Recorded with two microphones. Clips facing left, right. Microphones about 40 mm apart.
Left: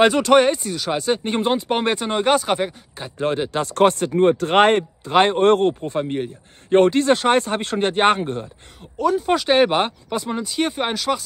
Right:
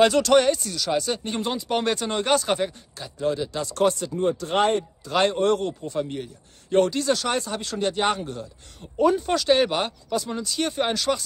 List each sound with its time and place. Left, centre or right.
0.0 s speech: left
3.2 s speech: left
5.0 s a man's voice: left
8.9 s speech: centre
9.3 s speech: left